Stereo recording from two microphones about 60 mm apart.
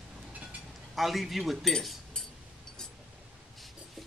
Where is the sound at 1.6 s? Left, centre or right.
Centre.